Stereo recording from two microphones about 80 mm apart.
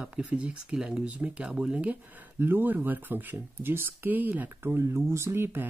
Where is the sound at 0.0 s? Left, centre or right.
Centre.